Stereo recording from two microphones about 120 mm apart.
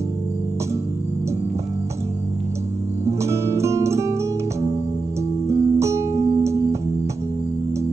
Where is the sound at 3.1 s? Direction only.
25° right (ahead or behind).